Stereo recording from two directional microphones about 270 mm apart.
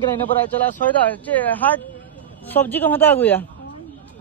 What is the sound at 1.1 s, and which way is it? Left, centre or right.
A woman's voice, centre.